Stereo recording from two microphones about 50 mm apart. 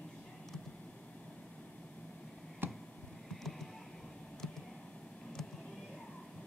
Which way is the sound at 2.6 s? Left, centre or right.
Right.